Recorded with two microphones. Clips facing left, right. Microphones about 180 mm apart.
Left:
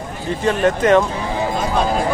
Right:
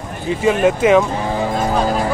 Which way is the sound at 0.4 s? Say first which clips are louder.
Right 2 dB; 5° right (ahead or behind).